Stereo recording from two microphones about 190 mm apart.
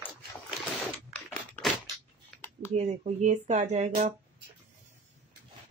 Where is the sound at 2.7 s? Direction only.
35° right (ahead or behind).